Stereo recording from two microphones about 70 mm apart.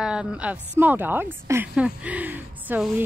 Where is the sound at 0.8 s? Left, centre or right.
Right.